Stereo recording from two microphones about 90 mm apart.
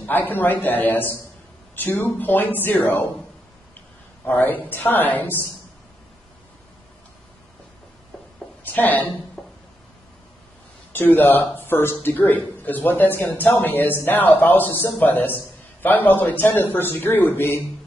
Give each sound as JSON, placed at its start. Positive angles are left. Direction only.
{"t": 0.0, "sound": "a man's voice", "side_deg": 20}
{"t": 4.3, "sound": "a man's voice", "side_deg": 20}
{"t": 8.6, "sound": "a man's voice", "side_deg": 20}
{"t": 9.4, "sound": "a sound", "side_deg": 5}
{"t": 10.9, "sound": "a man's voice", "side_deg": 20}